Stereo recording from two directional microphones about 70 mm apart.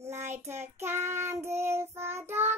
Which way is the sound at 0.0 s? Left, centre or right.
Right.